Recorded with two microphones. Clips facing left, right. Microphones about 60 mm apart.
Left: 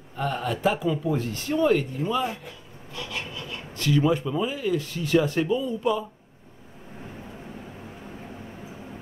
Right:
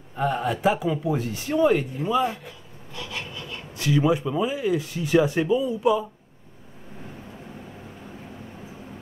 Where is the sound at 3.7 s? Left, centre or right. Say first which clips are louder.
Right 1 dB; centre.